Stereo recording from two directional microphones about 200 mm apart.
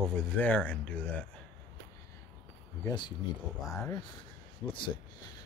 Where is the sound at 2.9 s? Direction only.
20° left (ahead or behind).